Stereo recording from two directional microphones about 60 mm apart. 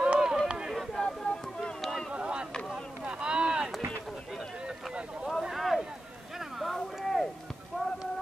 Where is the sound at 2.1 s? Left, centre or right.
Centre.